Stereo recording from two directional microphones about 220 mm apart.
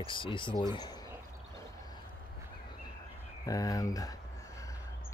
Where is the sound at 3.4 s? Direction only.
15° left (ahead or behind).